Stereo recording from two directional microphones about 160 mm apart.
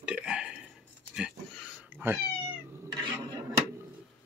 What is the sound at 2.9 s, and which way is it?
Cutlery, 30° right (ahead or behind).